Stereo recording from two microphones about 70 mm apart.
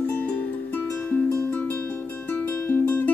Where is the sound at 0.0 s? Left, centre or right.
Left.